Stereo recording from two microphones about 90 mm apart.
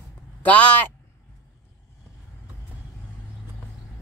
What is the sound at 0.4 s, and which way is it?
Speech, 15° left (ahead or behind).